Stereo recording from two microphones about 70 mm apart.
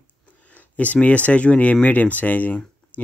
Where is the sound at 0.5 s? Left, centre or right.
Left.